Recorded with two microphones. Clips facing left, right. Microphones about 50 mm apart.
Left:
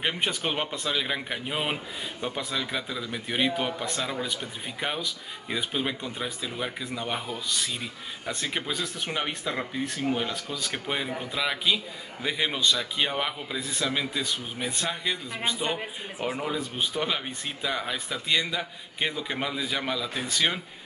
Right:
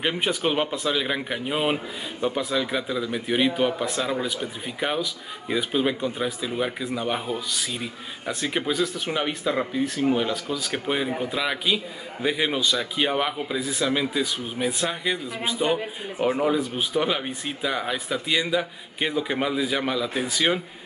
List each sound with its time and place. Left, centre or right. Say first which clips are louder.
0.0 s speech: right 4 dB; centre